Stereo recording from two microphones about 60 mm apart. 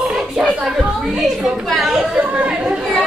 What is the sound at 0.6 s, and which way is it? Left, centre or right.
A woman's voice, centre.